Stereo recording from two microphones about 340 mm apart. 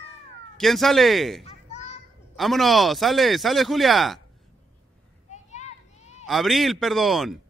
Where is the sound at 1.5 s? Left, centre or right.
Centre.